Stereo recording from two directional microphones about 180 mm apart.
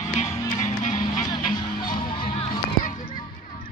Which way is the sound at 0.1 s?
45° left (ahead or behind).